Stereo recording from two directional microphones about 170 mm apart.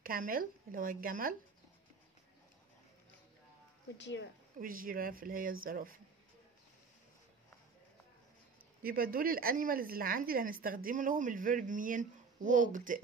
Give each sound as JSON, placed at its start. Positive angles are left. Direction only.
{"t": 0.0, "sound": "a woman's voice", "side_deg": -55}
{"t": 4.0, "sound": "a woman's voice", "side_deg": 90}
{"t": 4.6, "sound": "a woman's voice", "side_deg": -55}
{"t": 8.8, "sound": "a woman's voice", "side_deg": -60}